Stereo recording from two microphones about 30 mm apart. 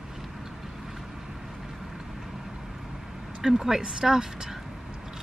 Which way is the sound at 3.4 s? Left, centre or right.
Centre.